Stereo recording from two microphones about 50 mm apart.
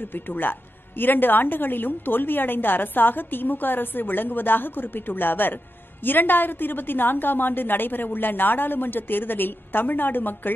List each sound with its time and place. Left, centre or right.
0.0 s speech: left